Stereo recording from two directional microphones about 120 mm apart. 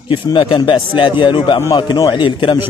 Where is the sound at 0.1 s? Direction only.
45° left (ahead or behind).